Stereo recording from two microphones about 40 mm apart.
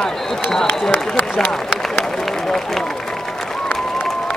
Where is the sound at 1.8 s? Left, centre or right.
Centre.